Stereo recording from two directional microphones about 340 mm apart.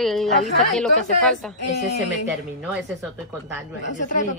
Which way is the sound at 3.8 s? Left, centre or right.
Left.